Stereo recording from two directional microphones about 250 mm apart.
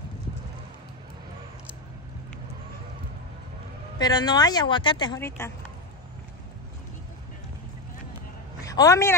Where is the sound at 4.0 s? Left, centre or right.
Centre.